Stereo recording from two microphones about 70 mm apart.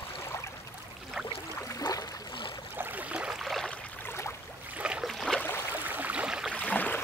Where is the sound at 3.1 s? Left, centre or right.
Centre.